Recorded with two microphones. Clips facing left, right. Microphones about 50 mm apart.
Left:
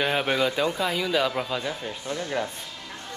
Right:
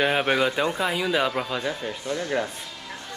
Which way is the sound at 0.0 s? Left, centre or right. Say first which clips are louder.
Right 2 dB; centre.